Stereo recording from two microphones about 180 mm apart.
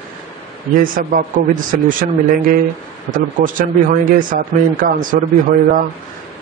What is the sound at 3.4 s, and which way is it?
Speech, 50° right (ahead or behind).